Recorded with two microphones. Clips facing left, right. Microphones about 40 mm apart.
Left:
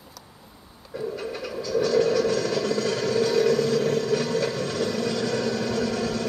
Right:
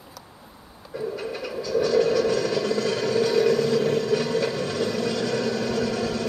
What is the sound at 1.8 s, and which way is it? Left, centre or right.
Vehicle, right.